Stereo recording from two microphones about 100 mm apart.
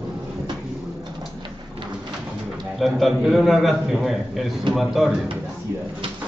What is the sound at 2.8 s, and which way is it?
A man's voice, centre (ahead or behind).